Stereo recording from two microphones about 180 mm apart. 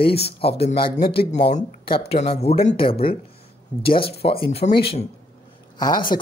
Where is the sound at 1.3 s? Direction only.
35° left (ahead or behind).